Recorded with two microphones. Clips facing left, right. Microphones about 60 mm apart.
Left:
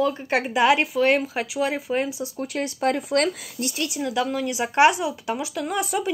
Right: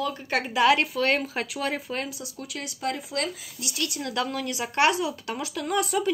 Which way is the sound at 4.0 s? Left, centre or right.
Centre.